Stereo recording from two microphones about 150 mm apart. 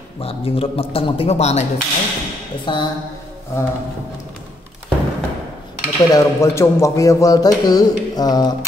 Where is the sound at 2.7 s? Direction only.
30° left (ahead or behind).